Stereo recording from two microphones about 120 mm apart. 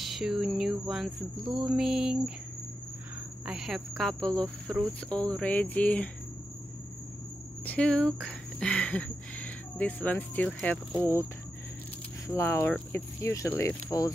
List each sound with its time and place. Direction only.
0.0 s cricket: centre (ahead or behind)
3.4 s cricket: 5° right (ahead or behind)
5.1 s speech: 10° left (ahead or behind)
7.6 s speech: 10° left (ahead or behind)
12.3 s speech: 20° left (ahead or behind)